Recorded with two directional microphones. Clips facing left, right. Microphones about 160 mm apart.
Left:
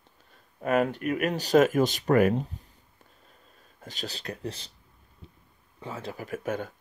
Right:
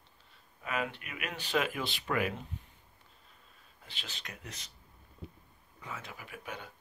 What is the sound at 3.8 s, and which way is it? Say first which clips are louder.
Speech: left 12 dB; 40° left (ahead or behind).